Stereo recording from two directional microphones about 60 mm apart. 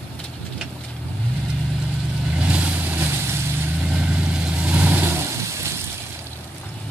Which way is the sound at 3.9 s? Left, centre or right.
Right.